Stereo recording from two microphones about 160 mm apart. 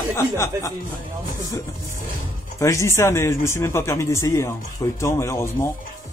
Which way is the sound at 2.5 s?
20° left (ahead or behind).